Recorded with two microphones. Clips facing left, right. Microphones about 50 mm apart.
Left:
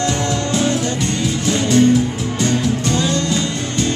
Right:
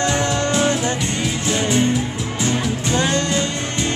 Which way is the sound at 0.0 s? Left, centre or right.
Centre.